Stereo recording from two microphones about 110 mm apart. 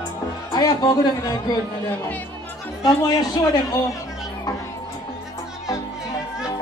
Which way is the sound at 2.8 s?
35° left (ahead or behind).